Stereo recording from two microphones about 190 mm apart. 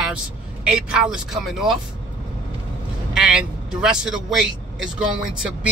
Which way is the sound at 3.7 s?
5° right (ahead or behind).